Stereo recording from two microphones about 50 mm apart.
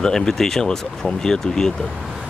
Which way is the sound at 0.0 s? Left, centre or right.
Centre.